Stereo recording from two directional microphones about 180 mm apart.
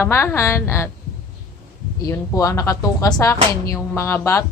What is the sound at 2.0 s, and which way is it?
Speech, 20° left (ahead or behind).